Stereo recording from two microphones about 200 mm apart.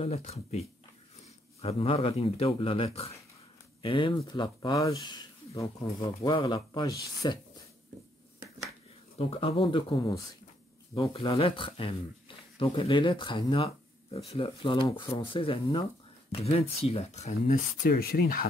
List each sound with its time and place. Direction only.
0.0 s speech: 30° left (ahead or behind)
9.3 s speech: 30° left (ahead or behind)
17.8 s speech: 50° left (ahead or behind)